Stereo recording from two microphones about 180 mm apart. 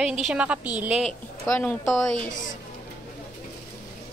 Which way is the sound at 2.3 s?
45° left (ahead or behind).